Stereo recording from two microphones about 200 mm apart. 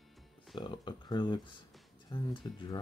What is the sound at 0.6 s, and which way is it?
Speech, 20° left (ahead or behind).